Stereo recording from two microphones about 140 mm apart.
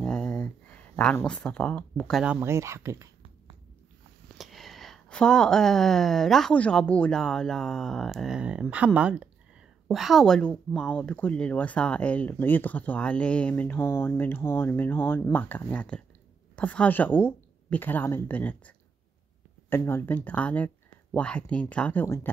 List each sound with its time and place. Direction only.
0.0 s a sound: 5° left (ahead or behind)
2.4 s speech: 20° right (ahead or behind)
4.4 s a woman's voice: centre (ahead or behind)
19.7 s a woman's voice: 15° left (ahead or behind)